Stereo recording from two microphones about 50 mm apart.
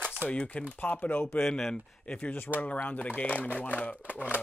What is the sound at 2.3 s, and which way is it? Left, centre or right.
Speech, left.